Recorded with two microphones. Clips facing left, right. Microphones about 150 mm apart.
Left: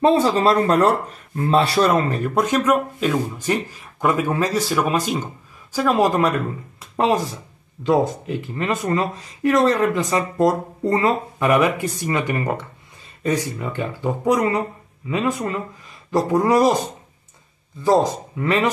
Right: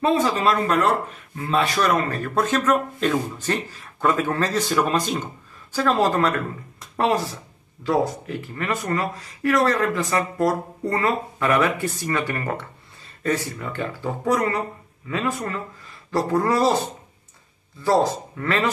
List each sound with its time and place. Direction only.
0.0 s speech: 30° left (ahead or behind)